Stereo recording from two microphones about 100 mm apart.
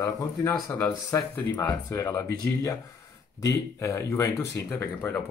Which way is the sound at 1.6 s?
40° left (ahead or behind).